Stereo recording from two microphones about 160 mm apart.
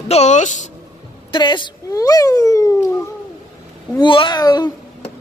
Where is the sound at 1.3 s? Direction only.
30° left (ahead or behind).